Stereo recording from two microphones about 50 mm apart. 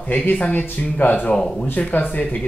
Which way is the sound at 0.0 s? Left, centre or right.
Left.